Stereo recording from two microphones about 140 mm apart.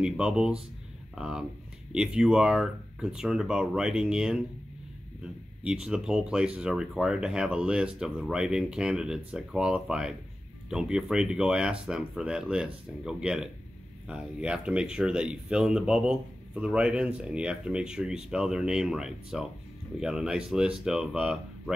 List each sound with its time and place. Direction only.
0.0 s speech: 5° right (ahead or behind)